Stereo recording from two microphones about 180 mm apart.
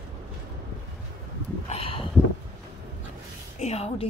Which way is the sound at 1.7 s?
30° left (ahead or behind).